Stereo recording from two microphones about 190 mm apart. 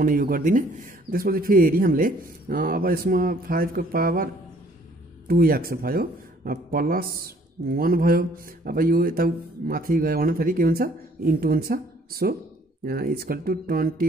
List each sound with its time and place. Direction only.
0.0 s speech: 50° right (ahead or behind)
5.3 s speech: 50° right (ahead or behind)